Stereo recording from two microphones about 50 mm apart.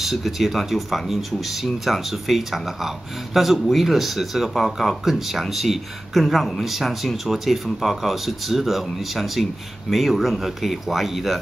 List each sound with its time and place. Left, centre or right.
0.0 s speech: centre